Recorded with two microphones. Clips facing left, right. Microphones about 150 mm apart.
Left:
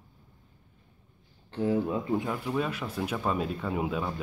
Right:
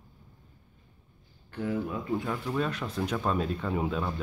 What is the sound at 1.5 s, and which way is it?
Speech, 25° left (ahead or behind).